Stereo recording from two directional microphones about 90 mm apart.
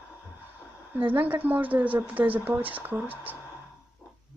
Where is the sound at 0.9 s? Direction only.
20° right (ahead or behind).